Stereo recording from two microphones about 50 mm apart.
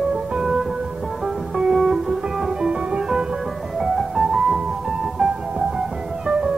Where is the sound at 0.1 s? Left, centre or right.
Centre.